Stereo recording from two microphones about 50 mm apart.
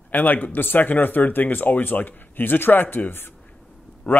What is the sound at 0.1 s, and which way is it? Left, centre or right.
Speech, left.